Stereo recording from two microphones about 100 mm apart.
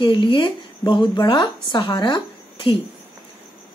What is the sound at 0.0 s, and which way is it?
Speech, 55° left (ahead or behind).